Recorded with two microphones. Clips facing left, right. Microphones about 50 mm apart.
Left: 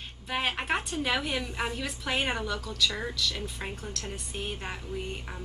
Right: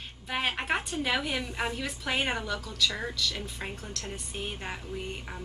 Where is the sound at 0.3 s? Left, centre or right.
Centre.